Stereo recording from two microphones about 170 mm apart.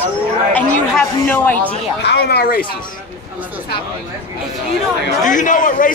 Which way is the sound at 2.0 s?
80° left.